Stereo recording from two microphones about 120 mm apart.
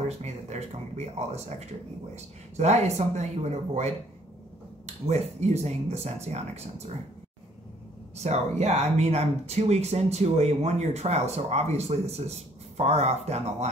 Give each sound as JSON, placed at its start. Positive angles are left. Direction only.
{"t": 0.2, "sound": "speech", "side_deg": -65}
{"t": 8.2, "sound": "speech", "side_deg": -65}